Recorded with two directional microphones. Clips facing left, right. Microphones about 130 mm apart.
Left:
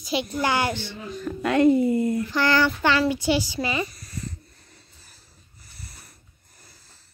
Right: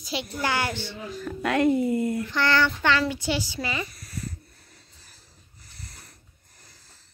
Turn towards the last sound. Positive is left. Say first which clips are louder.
# even
turn(degrees=10)  # may be behind; listen again after turning